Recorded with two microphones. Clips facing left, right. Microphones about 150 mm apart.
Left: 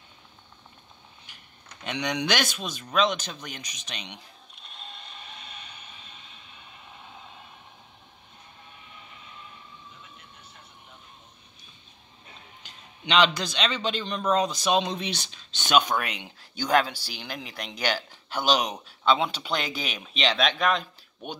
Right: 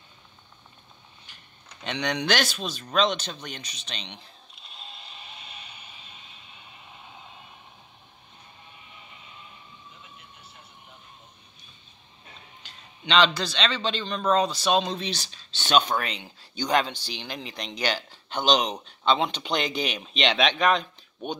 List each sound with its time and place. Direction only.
1.9 s a man's voice: 10° left (ahead or behind)
4.6 s vehicle: 5° right (ahead or behind)
12.6 s a man's voice: 10° left (ahead or behind)